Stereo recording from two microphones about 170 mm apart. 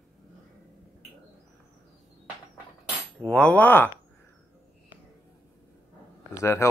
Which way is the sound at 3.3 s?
5° left (ahead or behind).